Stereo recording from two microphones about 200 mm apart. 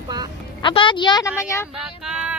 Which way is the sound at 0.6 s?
25° left (ahead or behind).